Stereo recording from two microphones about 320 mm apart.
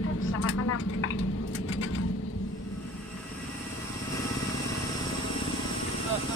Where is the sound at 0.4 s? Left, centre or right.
Left.